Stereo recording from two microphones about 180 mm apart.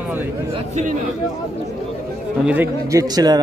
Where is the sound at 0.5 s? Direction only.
40° right (ahead or behind).